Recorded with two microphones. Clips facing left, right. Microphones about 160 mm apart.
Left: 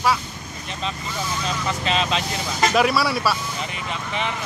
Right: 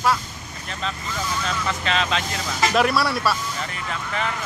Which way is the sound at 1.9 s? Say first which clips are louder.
Left 1 dB; 30° left (ahead or behind).